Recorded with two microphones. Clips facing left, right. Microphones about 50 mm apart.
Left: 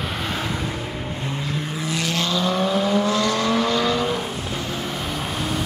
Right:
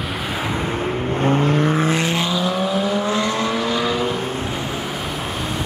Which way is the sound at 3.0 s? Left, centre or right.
Right.